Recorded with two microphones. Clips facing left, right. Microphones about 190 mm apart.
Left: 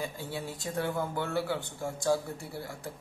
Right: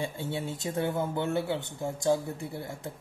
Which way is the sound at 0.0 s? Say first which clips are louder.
Right 3 dB; 25° right (ahead or behind).